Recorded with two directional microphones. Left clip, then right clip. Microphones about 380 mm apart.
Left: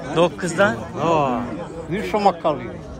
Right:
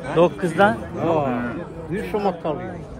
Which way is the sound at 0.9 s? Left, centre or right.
Left.